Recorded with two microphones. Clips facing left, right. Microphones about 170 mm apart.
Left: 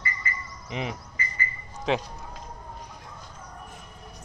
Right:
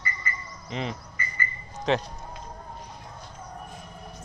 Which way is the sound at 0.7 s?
15° left (ahead or behind).